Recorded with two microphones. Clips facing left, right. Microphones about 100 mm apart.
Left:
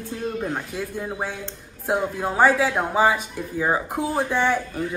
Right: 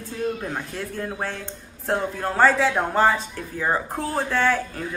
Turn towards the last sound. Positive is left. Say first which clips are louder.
# even
turn(degrees=15)  # may be behind; listen again after turning